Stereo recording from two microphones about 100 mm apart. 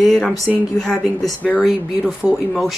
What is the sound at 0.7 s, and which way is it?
Speech, 5° left (ahead or behind).